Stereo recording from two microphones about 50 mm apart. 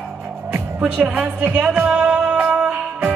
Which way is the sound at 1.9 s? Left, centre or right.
Centre.